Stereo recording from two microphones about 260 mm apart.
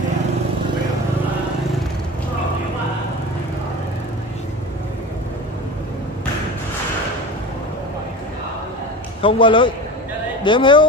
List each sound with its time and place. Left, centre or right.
9.2 s a man's voice: centre